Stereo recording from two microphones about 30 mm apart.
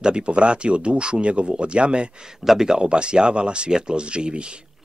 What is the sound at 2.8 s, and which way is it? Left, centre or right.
Speech, right.